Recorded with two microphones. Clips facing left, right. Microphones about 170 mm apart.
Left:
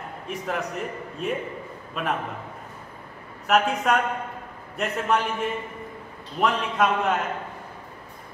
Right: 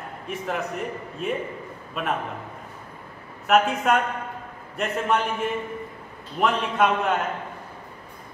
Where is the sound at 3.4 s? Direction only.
Centre (ahead or behind).